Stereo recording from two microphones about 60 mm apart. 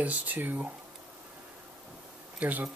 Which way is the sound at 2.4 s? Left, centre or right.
Right.